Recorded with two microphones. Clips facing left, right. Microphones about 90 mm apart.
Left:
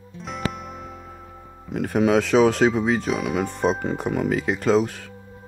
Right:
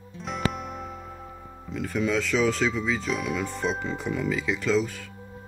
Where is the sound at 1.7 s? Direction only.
60° left (ahead or behind).